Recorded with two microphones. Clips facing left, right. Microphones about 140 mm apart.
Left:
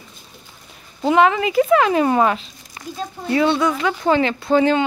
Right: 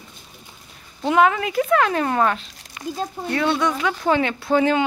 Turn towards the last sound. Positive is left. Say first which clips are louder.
# left 2 dB
turn(degrees=0)  # may be behind; listen again after turning